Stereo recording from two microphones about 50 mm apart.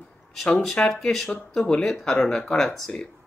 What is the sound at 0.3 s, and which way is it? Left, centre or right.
Speech, centre.